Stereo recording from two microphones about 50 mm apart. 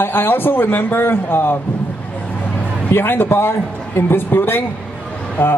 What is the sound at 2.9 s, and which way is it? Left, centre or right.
Speech, left.